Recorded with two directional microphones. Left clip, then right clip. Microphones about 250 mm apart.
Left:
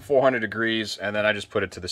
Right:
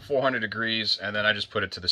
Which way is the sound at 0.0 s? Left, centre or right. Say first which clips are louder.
Left 5 dB; left.